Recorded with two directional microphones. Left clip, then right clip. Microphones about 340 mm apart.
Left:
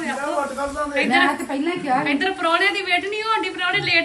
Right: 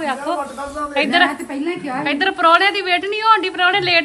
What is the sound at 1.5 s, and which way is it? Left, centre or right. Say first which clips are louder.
Speech: left 2 dB; left.